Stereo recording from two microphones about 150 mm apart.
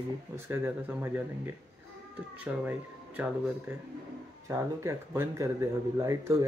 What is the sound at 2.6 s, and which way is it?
Speech, 10° right (ahead or behind).